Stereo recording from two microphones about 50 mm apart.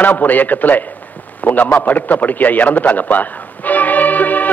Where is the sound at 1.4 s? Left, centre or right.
Left.